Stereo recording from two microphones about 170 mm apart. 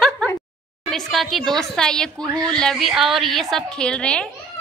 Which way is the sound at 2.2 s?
20° right (ahead or behind).